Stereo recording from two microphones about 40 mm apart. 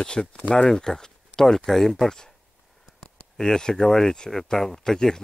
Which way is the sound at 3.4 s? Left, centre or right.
Centre.